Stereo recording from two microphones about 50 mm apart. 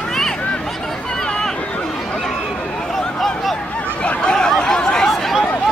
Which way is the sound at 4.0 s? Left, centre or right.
Left.